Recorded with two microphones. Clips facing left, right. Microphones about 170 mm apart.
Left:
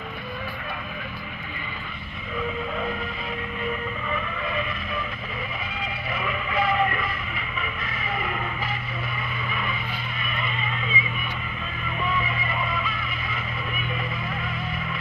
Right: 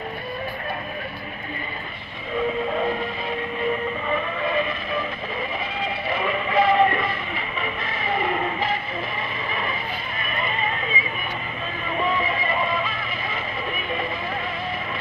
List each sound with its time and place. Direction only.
2.7 s vehicle: 35° right (ahead or behind)
4.1 s vehicle: 30° right (ahead or behind)
5.8 s music: 30° right (ahead or behind)
9.5 s vehicle: 35° right (ahead or behind)
10.2 s music: 45° right (ahead or behind)
12.0 s music: 30° right (ahead or behind)